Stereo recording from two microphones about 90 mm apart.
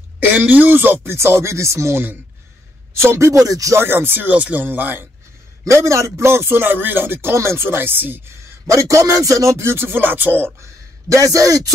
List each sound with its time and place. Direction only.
0.3 s speech: 20° right (ahead or behind); by 3.8 s 40° right (ahead or behind)
3.8 s speech: 25° right (ahead or behind)
5.7 s speech: 35° right (ahead or behind)
8.6 s speech: 35° right (ahead or behind); by 10.5 s 20° right (ahead or behind)
10.6 s speech: 35° right (ahead or behind)